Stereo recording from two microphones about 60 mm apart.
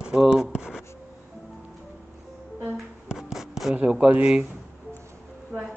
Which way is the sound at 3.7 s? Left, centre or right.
Right.